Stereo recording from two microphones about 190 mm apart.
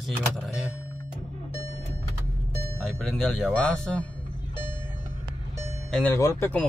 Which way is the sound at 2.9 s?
5° left (ahead or behind).